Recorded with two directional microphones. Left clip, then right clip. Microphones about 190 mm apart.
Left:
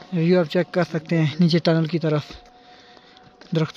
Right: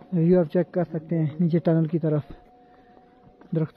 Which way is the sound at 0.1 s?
Centre (ahead or behind).